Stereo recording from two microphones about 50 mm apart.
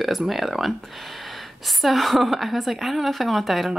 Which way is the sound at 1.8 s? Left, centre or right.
Centre.